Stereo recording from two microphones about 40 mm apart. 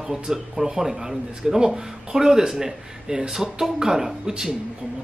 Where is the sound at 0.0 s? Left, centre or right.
Centre.